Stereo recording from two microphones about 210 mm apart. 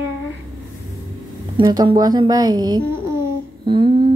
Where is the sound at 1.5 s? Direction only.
20° right (ahead or behind).